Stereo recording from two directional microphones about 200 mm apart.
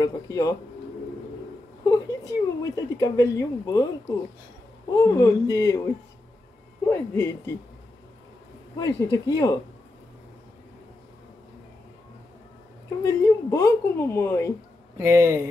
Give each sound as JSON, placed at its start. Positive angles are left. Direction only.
{"t": 0.0, "sound": "a woman's voice", "side_deg": 15}
{"t": 1.9, "sound": "a woman's voice", "side_deg": 15}
{"t": 4.9, "sound": "a woman's voice", "side_deg": 15}
{"t": 6.9, "sound": "a woman's voice", "side_deg": 10}
{"t": 8.7, "sound": "a woman's voice", "side_deg": 20}
{"t": 13.0, "sound": "a woman's voice", "side_deg": 15}
{"t": 15.0, "sound": "speech", "side_deg": -15}